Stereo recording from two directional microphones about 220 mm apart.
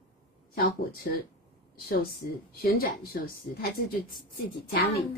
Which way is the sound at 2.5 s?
40° left (ahead or behind).